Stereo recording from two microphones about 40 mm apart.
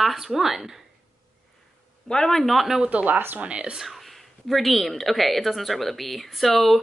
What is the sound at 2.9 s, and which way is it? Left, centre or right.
Speech, right.